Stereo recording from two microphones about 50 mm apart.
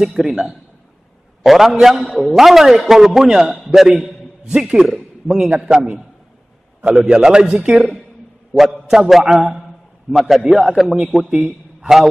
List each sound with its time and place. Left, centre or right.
0.0 s a man's voice: centre
8.5 s a man's voice: centre